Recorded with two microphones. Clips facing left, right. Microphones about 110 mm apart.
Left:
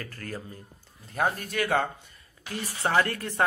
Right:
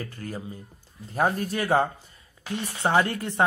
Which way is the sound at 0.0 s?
20° right (ahead or behind).